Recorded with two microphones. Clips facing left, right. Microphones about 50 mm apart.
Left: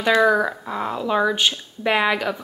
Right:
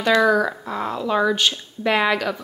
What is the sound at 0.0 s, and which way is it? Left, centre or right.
Speech, centre.